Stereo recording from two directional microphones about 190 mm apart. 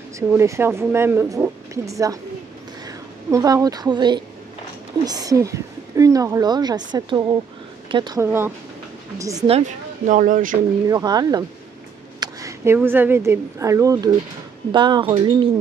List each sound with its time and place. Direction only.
0.3 s speech: 15° right (ahead or behind)
8.2 s speech: 10° right (ahead or behind)
9.5 s speech: 40° right (ahead or behind)
10.9 s speech: 20° right (ahead or behind)